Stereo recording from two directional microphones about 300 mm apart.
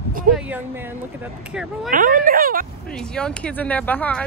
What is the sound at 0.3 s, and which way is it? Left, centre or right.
Speech, centre.